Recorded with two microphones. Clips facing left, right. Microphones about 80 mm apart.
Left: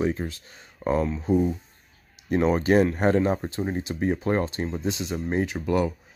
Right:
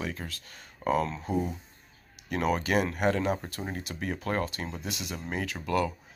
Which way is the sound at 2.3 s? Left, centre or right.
Left.